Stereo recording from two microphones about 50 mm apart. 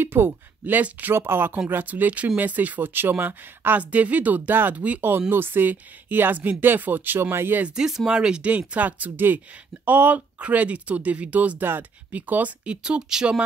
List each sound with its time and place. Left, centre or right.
0.0 s speech: right
0.7 s speech: right
1.1 s speech: right
1.7 s speech: right
5.3 s speech: right
7.6 s speech: centre
8.5 s speech: right
12.6 s speech: centre